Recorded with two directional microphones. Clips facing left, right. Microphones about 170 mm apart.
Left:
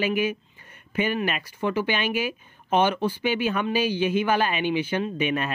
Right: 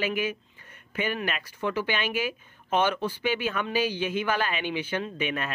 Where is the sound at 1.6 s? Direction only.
25° left (ahead or behind).